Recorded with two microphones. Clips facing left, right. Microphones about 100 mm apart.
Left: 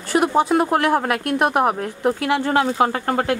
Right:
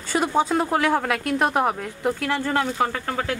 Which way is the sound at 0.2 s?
10° left (ahead or behind).